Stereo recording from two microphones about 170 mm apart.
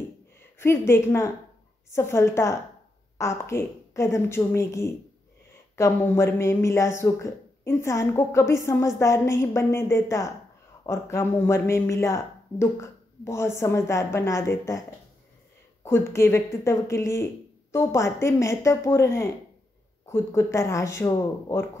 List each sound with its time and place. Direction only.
0.6 s speech: 15° left (ahead or behind)
15.8 s speech: 15° left (ahead or behind)